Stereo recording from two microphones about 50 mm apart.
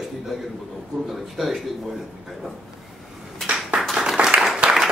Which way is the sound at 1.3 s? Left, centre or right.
Centre.